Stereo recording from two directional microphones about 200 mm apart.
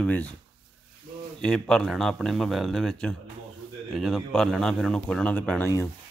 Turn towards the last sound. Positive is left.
turn(degrees=5)  # may be behind; listen again after turning